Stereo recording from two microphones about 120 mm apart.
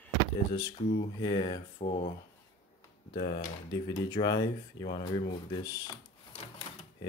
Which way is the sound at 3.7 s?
35° left (ahead or behind).